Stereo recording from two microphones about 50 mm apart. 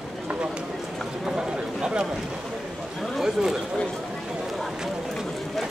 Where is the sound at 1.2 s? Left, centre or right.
Centre.